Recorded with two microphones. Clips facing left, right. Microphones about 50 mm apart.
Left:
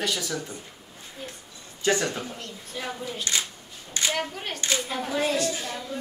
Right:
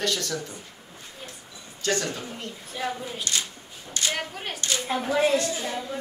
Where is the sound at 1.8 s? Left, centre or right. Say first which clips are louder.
Left 3 dB; centre.